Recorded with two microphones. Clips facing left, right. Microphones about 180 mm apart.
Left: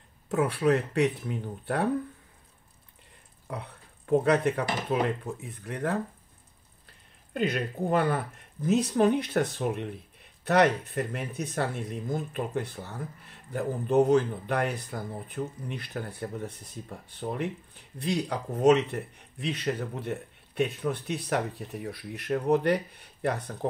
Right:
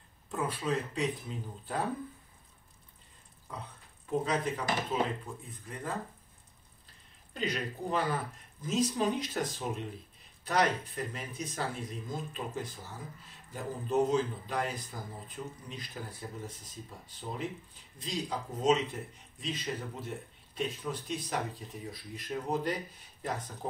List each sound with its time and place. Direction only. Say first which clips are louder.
0.3 s speech: left 8 dB; 75° left (ahead or behind)
3.4 s speech: left 6 dB; 65° left (ahead or behind)
7.3 s speech: left 6 dB; 55° left (ahead or behind)